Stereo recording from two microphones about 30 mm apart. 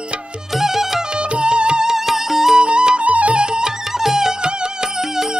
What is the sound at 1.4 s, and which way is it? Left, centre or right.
Music, right.